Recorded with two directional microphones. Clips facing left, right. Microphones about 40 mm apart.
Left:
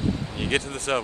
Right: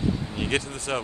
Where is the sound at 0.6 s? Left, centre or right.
Left.